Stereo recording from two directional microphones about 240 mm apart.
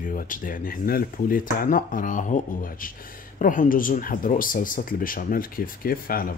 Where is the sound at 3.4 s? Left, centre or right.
Left.